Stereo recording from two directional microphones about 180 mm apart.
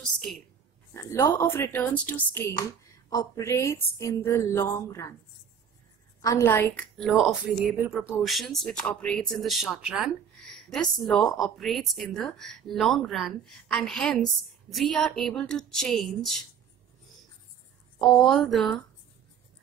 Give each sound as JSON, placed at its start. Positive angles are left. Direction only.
{"t": 0.0, "sound": "a sound", "side_deg": 0}
{"t": 0.9, "sound": "a woman's voice", "side_deg": 15}
{"t": 6.2, "sound": "a woman's voice", "side_deg": 15}
{"t": 18.1, "sound": "a woman's voice", "side_deg": 0}